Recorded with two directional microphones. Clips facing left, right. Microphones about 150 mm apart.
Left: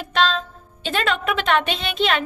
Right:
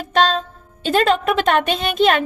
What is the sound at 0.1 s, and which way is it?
Music, 40° right (ahead or behind).